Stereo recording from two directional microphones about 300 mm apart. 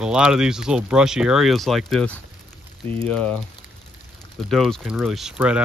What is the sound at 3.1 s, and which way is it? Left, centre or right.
Speech, centre.